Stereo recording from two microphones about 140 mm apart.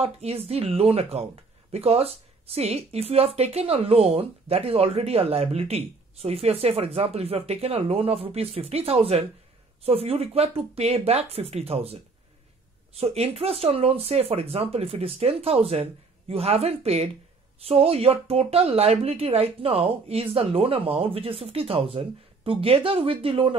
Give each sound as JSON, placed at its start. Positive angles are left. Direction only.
{"t": 0.0, "sound": "speech", "side_deg": -45}